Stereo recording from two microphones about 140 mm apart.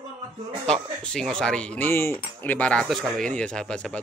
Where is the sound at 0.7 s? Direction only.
5° left (ahead or behind).